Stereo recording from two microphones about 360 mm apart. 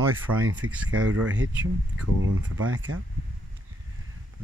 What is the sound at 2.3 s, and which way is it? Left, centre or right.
Speech, right.